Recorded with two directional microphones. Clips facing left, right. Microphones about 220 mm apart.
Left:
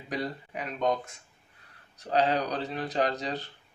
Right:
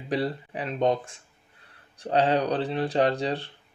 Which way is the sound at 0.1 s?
30° right (ahead or behind).